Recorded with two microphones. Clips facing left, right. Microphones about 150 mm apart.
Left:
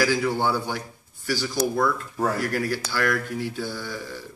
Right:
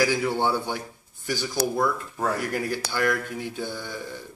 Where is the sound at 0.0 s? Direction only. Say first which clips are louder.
Left 1 dB; 20° right (ahead or behind).